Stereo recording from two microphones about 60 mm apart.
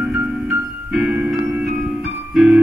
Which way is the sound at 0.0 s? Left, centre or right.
Centre.